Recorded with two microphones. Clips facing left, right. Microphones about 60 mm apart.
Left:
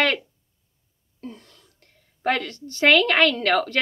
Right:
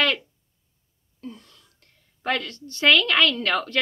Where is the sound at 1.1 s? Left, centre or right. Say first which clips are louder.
Left 1 dB; left.